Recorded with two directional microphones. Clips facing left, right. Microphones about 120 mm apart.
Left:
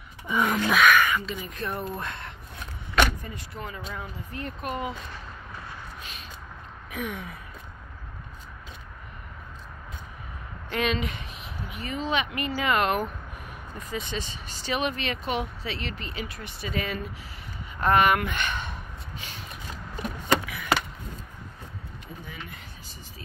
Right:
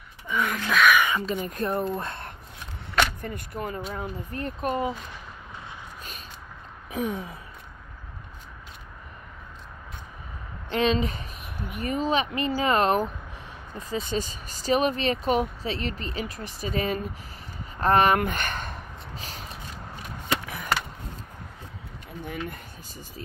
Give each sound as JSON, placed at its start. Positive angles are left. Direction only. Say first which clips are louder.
{"t": 0.3, "sound": "speech", "louder": "left 3 dB", "side_deg": 20}
{"t": 1.2, "sound": "speech", "louder": "right 5 dB", "side_deg": -45}
{"t": 3.2, "sound": "speech", "louder": "right 5 dB", "side_deg": -50}
{"t": 6.9, "sound": "speech", "louder": "right 5 dB", "side_deg": -35}
{"t": 10.7, "sound": "speech", "louder": "right 4 dB", "side_deg": -30}
{"t": 11.4, "sound": "speech", "louder": "right 6 dB", "side_deg": -50}
{"t": 17.7, "sound": "a sound", "louder": "right 1 dB", "side_deg": -35}
{"t": 20.4, "sound": "chop", "louder": "right 2 dB", "side_deg": -40}
{"t": 22.2, "sound": "speech", "louder": "right 11 dB", "side_deg": -55}